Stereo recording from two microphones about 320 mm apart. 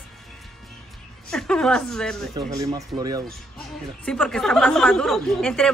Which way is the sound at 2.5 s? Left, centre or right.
Centre.